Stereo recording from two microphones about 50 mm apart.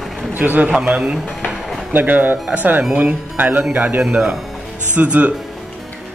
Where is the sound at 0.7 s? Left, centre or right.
Right.